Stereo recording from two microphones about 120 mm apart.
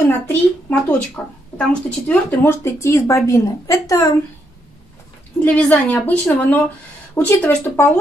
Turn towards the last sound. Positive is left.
turn(degrees=15)  # may be behind; listen again after turning